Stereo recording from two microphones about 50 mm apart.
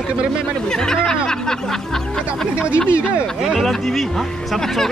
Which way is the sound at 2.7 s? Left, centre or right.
Right.